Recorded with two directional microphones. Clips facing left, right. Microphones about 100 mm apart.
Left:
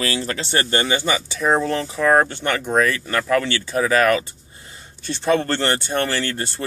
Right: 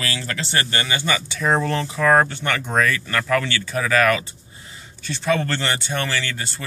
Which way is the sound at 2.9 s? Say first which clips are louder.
Left 1 dB; 25° left (ahead or behind).